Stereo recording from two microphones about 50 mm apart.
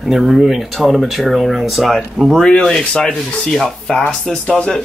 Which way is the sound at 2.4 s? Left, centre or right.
Centre.